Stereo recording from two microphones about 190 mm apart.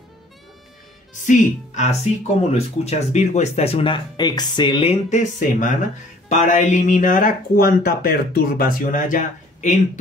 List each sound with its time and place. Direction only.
1.2 s speech: 40° left (ahead or behind)